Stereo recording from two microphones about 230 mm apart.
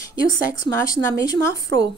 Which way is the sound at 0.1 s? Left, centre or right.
Centre.